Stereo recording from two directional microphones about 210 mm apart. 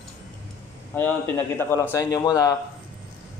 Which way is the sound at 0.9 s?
10° left (ahead or behind).